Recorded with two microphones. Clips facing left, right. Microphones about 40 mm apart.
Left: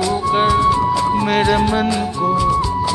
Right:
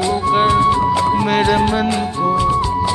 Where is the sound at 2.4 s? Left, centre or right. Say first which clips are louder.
Even; right.